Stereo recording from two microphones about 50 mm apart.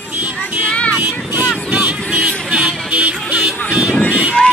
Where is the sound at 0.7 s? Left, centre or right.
Left.